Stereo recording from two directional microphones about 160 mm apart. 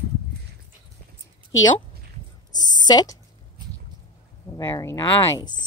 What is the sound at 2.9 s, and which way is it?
Speech, 25° left (ahead or behind).